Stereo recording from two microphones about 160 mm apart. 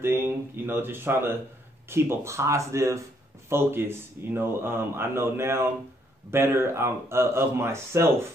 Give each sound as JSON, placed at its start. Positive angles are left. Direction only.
{"t": 0.0, "sound": "speech", "side_deg": -15}